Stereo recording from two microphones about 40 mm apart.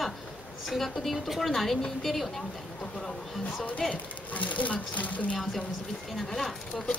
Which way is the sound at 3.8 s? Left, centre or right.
Centre.